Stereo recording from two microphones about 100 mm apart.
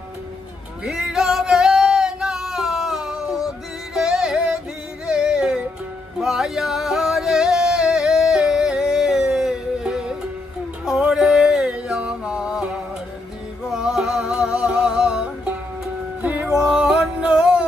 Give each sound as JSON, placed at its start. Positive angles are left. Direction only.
{"t": 0.8, "sound": "music", "side_deg": -5}
{"t": 13.7, "sound": "music", "side_deg": -5}
{"t": 16.2, "sound": "music", "side_deg": -20}
{"t": 16.5, "sound": "music", "side_deg": -5}